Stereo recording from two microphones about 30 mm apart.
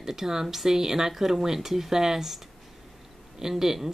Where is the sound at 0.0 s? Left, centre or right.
Centre.